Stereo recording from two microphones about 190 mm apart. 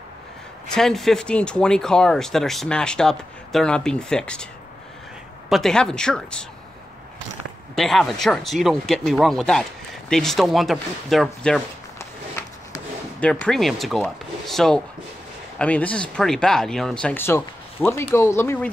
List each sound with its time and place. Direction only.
0.7 s speech: centre (ahead or behind)
5.5 s speech: 5° left (ahead or behind)
7.7 s speech: centre (ahead or behind)
13.2 s speech: 5° left (ahead or behind)